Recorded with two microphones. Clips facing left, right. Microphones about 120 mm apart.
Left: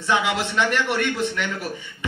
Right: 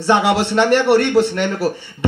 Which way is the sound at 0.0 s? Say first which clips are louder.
Right 7 dB; 35° right (ahead or behind).